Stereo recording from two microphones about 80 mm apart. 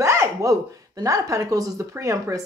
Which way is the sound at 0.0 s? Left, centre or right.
Right.